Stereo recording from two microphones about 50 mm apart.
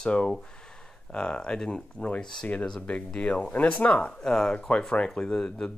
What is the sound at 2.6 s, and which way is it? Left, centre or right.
Speech, centre.